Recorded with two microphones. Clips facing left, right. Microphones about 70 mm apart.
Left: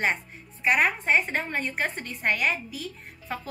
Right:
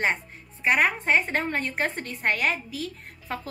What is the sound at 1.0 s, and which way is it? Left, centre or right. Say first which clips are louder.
A woman's voice: right 1 dB; right.